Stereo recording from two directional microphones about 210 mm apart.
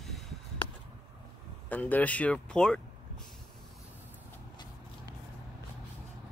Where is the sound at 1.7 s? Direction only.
10° left (ahead or behind).